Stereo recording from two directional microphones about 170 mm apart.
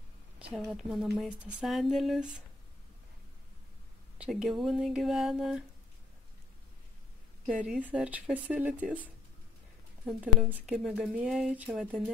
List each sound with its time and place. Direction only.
0.4 s a woman's voice: 5° right (ahead or behind)
4.2 s a woman's voice: 5° right (ahead or behind)
7.4 s speech: 5° right (ahead or behind)
10.0 s a woman's voice: 5° right (ahead or behind)